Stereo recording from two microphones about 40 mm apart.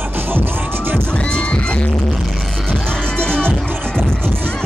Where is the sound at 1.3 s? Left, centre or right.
Left.